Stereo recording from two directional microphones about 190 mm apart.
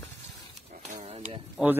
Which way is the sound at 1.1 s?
35° right (ahead or behind).